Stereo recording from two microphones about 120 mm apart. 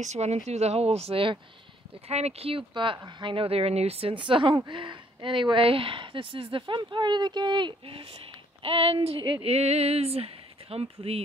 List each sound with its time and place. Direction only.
0.0 s speech: 70° right (ahead or behind); by 1.4 s 50° right (ahead or behind)
2.0 s speech: 60° right (ahead or behind); by 9.5 s 45° right (ahead or behind)
9.5 s speech: 60° right (ahead or behind)